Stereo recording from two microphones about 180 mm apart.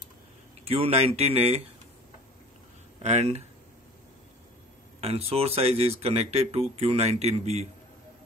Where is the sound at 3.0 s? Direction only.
35° right (ahead or behind).